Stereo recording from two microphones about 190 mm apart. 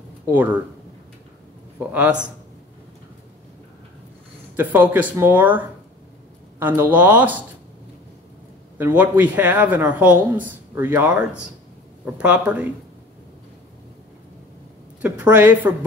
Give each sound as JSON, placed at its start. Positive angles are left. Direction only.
{"t": 0.3, "sound": "speech", "side_deg": -10}
{"t": 1.9, "sound": "speech", "side_deg": -5}
{"t": 4.6, "sound": "speech", "side_deg": -10}
{"t": 6.6, "sound": "speech", "side_deg": -10}
{"t": 8.7, "sound": "speech", "side_deg": -10}
{"t": 15.0, "sound": "a woman's voice", "side_deg": -5}